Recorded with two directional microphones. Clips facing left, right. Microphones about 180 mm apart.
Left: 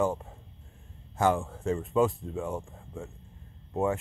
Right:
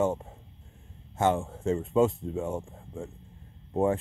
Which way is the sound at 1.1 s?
25° right (ahead or behind).